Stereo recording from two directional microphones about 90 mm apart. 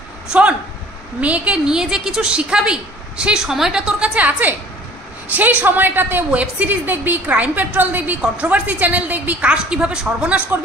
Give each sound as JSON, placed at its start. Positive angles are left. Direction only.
{"t": 0.3, "sound": "a woman's voice", "side_deg": -15}